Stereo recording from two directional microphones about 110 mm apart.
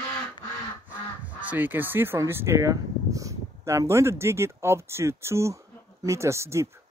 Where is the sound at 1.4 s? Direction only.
15° right (ahead or behind).